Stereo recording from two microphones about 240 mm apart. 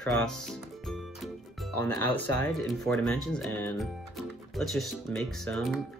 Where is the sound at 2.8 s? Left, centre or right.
Centre.